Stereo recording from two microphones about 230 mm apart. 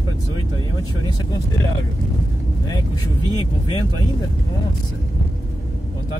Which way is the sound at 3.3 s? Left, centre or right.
Centre.